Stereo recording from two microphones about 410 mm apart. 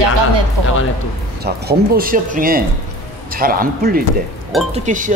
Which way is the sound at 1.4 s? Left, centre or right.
Right.